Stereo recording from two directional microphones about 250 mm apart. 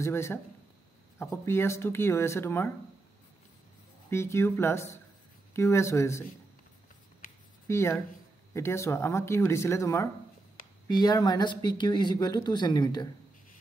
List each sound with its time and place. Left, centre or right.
0.0 s speech: centre
4.1 s speech: centre
7.6 s speech: centre